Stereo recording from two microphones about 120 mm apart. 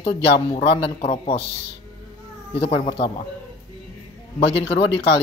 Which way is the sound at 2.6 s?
55° left (ahead or behind).